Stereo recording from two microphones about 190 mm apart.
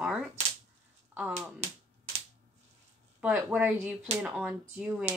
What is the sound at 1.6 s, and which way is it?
Speech, 35° right (ahead or behind).